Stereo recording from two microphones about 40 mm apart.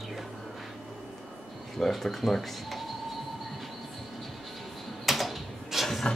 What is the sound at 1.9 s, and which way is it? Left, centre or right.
Speech, centre.